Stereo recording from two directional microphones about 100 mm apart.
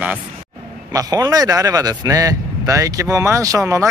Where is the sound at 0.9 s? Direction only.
40° right (ahead or behind).